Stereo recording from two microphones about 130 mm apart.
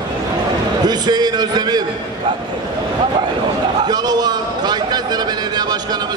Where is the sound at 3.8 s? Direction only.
30° right (ahead or behind).